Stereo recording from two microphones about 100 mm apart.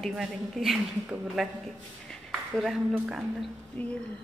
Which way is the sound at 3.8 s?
15° left (ahead or behind).